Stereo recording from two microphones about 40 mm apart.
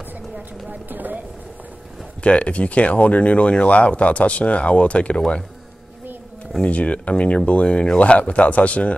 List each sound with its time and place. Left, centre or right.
0.7 s speech: right
2.2 s speech: left
6.6 s speech: left